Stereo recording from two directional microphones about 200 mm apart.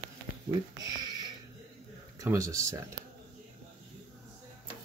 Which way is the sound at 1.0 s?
20° right (ahead or behind).